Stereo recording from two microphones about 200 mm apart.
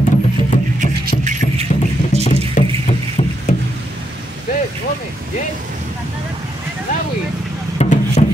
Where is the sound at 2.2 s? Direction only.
35° left (ahead or behind).